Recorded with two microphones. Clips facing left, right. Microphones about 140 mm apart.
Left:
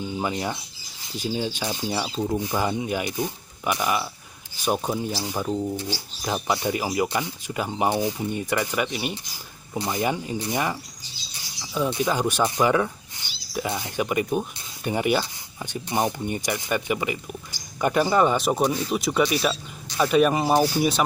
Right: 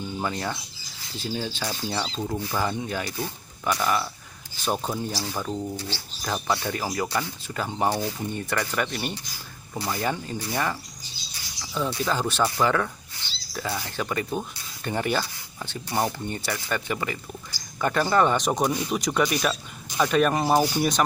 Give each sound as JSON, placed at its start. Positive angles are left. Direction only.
{"t": 0.0, "sound": "speech", "side_deg": 15}